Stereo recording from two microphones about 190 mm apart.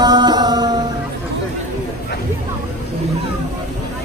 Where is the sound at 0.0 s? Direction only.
20° right (ahead or behind).